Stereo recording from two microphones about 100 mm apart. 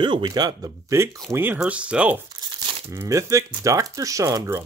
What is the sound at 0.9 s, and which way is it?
Speech, 25° right (ahead or behind).